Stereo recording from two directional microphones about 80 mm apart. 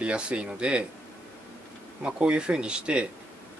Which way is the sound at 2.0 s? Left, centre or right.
Centre.